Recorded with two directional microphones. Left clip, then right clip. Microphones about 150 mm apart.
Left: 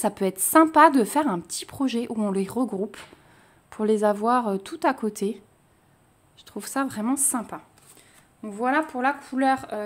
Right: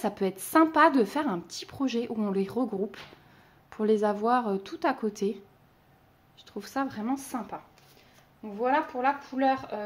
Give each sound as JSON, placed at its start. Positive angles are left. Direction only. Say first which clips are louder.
{"t": 0.0, "sound": "speech", "louder": "left 5 dB", "side_deg": 35}
{"t": 8.4, "sound": "speech", "louder": "left 3 dB", "side_deg": 90}